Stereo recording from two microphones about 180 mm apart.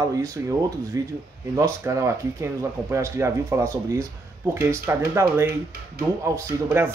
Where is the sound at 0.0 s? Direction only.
15° right (ahead or behind).